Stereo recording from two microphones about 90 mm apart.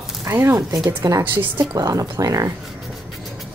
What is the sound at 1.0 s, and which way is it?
A woman's voice, 40° right (ahead or behind).